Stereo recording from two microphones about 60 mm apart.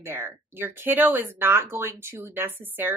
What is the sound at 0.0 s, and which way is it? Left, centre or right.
A woman's voice, right.